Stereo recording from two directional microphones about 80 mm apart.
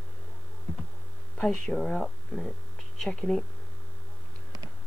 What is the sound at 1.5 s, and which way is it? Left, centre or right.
Speech, centre.